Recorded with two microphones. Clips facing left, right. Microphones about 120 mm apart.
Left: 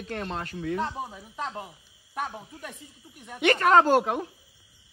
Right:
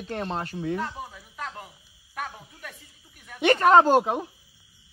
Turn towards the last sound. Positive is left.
turn(degrees=-15)  # may be behind; listen again after turning